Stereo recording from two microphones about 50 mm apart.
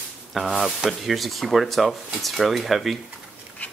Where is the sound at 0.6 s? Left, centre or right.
Centre.